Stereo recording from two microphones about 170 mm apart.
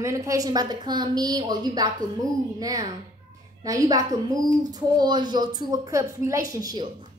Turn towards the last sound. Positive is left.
turn(degrees=-25)  # may be behind; listen again after turning